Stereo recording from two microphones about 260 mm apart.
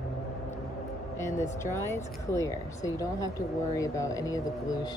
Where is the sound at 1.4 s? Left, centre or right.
Left.